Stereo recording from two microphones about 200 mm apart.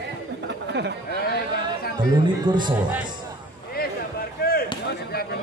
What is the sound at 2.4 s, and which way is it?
Speech, 20° right (ahead or behind).